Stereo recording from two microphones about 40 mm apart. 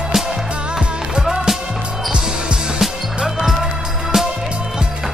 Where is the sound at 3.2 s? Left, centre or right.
Centre.